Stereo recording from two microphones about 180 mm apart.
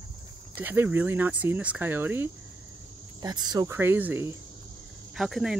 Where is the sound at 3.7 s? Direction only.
10° right (ahead or behind).